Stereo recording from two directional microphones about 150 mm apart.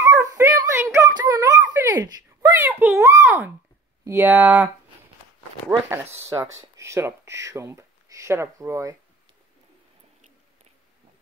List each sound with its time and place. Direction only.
0.0 s a sound: 20° right (ahead or behind)
4.0 s speech: 15° right (ahead or behind)
5.9 s speech: 15° right (ahead or behind)